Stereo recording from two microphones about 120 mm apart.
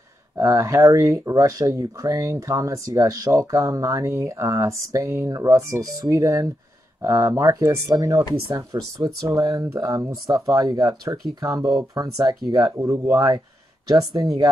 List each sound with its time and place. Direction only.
0.4 s speech: 25° right (ahead or behind)